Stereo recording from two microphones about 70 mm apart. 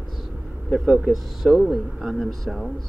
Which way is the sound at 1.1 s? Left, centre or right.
Centre.